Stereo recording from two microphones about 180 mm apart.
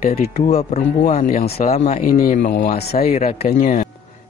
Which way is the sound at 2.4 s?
75° left (ahead or behind).